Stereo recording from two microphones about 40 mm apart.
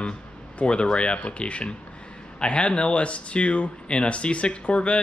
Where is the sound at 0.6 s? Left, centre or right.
Left.